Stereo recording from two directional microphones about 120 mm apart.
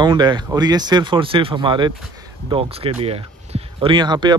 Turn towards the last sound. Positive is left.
turn(degrees=-40)  # may be behind; listen again after turning